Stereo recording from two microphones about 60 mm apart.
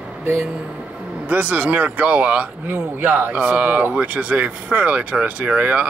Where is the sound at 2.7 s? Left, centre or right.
Right.